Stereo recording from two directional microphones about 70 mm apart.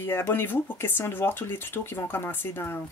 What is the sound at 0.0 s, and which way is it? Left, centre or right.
Speech, left.